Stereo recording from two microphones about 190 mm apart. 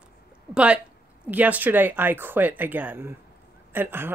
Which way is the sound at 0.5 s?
5° right (ahead or behind).